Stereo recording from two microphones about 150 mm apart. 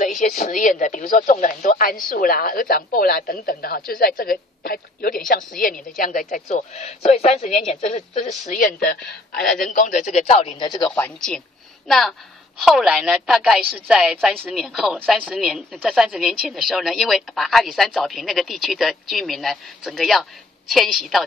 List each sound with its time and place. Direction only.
0.0 s speech: 60° left (ahead or behind)
8.5 s a man's voice: 70° left (ahead or behind); by 10.7 s 40° left (ahead or behind)
10.9 s a woman's voice: 5° left (ahead or behind)